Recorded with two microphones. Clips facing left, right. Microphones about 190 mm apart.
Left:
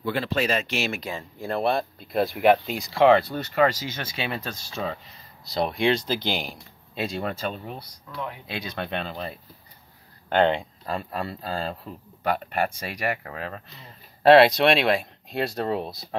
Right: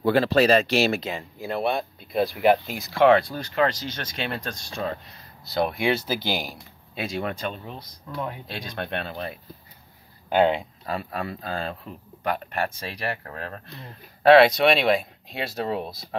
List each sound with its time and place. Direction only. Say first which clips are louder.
0.0 s speech: right 7 dB; 40° right (ahead or behind)
1.4 s speech: left 1 dB; centre (ahead or behind)
8.1 s speech: right 3 dB; 30° right (ahead or behind)
8.5 s speech: left 1 dB; 5° left (ahead or behind)
10.3 s speech: right 1 dB; 5° right (ahead or behind)
12.2 s speech: left 2 dB; 10° left (ahead or behind)